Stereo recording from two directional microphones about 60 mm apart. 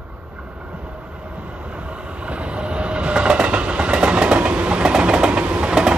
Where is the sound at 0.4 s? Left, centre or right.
Centre.